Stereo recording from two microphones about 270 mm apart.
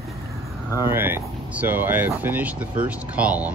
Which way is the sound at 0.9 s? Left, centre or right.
Centre.